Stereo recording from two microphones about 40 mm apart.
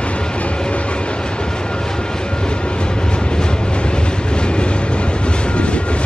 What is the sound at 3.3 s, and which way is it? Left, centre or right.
Train, left.